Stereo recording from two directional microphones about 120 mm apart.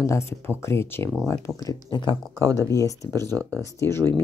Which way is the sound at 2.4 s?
25° right (ahead or behind).